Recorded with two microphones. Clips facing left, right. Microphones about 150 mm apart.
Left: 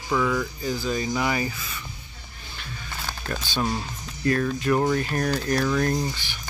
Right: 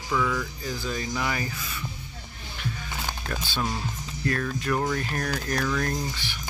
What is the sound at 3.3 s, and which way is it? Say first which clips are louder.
Speech: left 4 dB; centre (ahead or behind).